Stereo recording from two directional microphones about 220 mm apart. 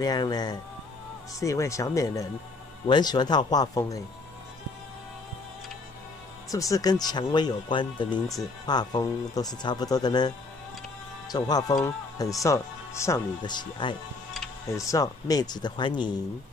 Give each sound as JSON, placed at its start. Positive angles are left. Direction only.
{"t": 0.0, "sound": "speech", "side_deg": 20}
{"t": 6.5, "sound": "speech", "side_deg": 15}